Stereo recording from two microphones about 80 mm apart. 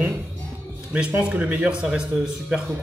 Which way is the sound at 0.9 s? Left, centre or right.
Centre.